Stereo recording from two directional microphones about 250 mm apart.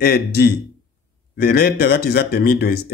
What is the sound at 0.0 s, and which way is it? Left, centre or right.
Speech, left.